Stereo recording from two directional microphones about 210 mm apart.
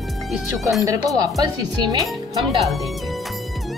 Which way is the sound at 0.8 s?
15° right (ahead or behind).